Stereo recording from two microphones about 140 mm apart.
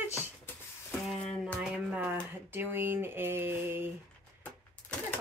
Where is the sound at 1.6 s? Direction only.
5° right (ahead or behind).